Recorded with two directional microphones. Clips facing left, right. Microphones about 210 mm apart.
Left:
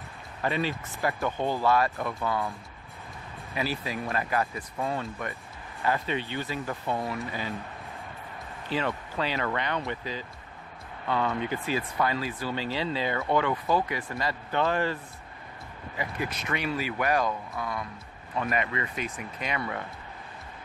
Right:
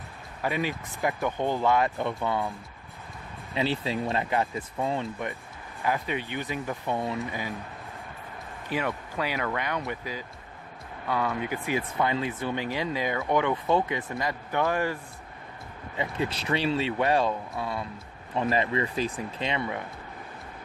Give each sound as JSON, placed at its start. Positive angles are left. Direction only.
{"t": 0.4, "sound": "speech", "side_deg": -10}
{"t": 3.5, "sound": "speech", "side_deg": -25}
{"t": 8.6, "sound": "speech", "side_deg": -10}
{"t": 16.0, "sound": "speech", "side_deg": -30}